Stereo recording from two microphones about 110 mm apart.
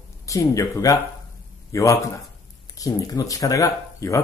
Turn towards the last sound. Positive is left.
turn(degrees=30)  # may be behind; listen again after turning